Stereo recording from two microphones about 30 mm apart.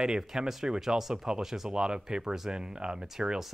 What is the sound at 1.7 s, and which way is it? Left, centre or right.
Speech, right.